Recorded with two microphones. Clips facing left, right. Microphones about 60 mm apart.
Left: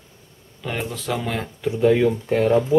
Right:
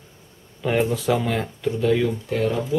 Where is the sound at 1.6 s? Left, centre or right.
Centre.